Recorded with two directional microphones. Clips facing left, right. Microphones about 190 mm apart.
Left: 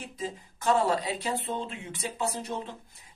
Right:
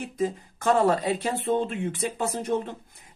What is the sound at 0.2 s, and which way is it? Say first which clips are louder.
Speech: right 8 dB; 50° right (ahead or behind).